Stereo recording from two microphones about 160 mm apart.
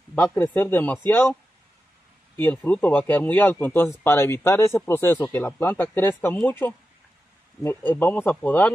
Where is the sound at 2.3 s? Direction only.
10° left (ahead or behind).